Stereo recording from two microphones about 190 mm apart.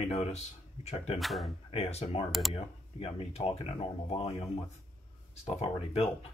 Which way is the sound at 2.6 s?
30° left (ahead or behind).